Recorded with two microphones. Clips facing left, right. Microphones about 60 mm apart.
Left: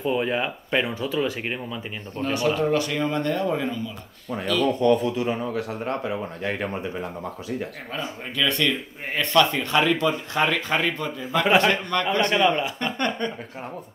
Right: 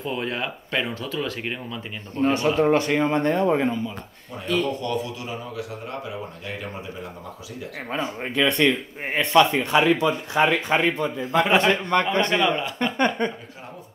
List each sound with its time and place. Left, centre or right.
0.0 s speech: centre
2.2 s speech: right
4.8 s speech: left
8.4 s speech: right
12.4 s speech: left
12.7 s speech: centre